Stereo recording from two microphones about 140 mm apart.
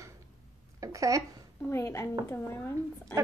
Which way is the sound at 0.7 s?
25° right (ahead or behind).